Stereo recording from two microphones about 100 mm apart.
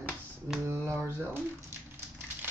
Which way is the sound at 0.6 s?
25° right (ahead or behind).